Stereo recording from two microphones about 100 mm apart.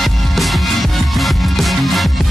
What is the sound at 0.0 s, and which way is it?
Music, centre (ahead or behind).